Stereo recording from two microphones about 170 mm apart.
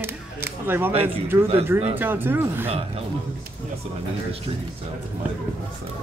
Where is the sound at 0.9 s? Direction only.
35° right (ahead or behind).